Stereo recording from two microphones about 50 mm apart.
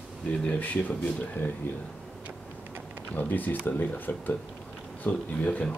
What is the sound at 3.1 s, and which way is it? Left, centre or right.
Speech, left.